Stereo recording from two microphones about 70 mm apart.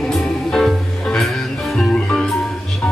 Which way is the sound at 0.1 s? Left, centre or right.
Centre.